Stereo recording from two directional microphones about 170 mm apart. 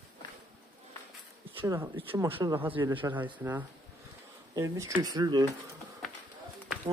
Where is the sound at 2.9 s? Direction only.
30° right (ahead or behind).